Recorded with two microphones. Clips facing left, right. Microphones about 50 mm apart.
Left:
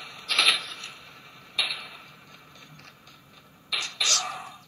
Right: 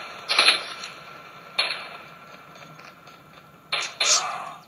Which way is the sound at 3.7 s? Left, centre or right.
Right.